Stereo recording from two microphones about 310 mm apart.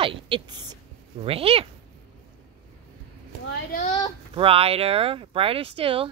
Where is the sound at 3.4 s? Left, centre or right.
Left.